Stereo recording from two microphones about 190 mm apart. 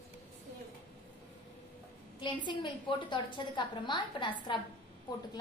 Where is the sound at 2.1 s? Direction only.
25° left (ahead or behind).